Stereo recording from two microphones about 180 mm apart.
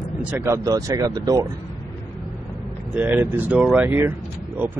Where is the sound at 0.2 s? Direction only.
10° right (ahead or behind).